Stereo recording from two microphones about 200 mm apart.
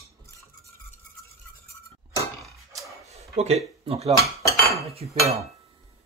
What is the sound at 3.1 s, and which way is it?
Speech, 30° right (ahead or behind).